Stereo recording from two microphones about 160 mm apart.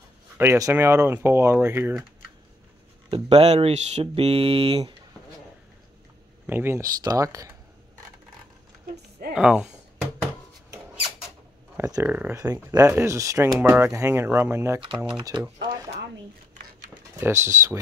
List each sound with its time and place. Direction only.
0.4 s speech: 20° right (ahead or behind)
3.1 s speech: 40° right (ahead or behind)
6.4 s speech: 15° right (ahead or behind)
9.3 s speech: 5° right (ahead or behind)
11.7 s speech: 15° right (ahead or behind)
15.0 s speech: 30° right (ahead or behind)
17.2 s speech: 15° right (ahead or behind)